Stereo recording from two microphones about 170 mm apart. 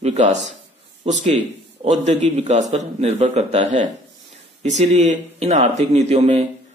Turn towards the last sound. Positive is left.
turn(degrees=-40)  # may be behind; listen again after turning